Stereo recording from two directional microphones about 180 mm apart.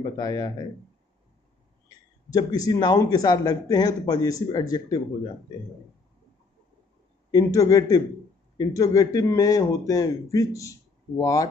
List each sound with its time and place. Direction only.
0.0 s speech: 20° left (ahead or behind)
2.2 s speech: 20° left (ahead or behind)
7.2 s speech: 20° left (ahead or behind)